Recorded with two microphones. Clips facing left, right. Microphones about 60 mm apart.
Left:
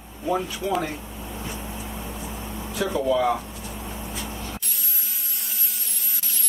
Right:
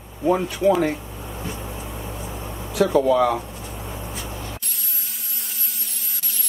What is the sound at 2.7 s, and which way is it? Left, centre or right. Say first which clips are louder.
Speech: right 6 dB; right.